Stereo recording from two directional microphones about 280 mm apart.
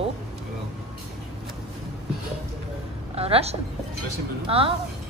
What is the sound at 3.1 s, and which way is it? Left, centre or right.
A woman's voice, right.